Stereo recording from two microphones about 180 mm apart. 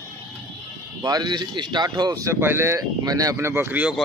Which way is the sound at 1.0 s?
20° right (ahead or behind).